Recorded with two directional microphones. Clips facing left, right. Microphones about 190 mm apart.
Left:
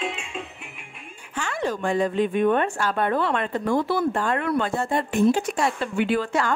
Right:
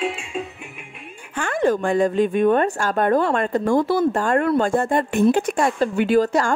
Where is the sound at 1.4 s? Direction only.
50° right (ahead or behind).